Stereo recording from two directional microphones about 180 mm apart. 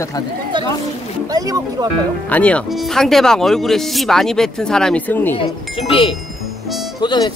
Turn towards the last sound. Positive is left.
turn(degrees=25)  # may be behind; listen again after turning